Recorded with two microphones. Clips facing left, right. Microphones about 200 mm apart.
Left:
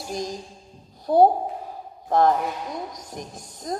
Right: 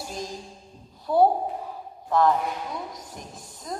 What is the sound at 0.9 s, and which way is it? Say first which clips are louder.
A woman's voice: left 3 dB; 40° left (ahead or behind).